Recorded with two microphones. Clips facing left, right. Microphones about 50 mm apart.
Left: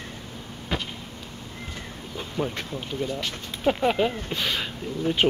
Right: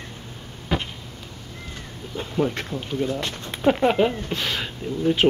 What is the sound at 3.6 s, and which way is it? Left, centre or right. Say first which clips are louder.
Speech: right 4 dB; centre.